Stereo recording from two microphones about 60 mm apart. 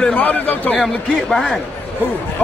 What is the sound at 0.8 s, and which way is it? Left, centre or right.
Speech, centre.